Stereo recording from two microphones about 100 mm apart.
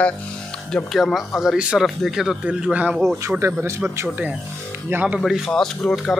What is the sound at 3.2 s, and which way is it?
Speech, 25° right (ahead or behind).